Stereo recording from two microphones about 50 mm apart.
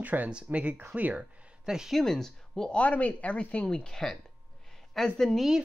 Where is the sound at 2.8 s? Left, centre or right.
Left; by 5.5 s centre.